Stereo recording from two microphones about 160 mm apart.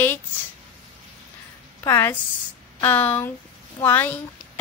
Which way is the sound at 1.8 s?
15° left (ahead or behind).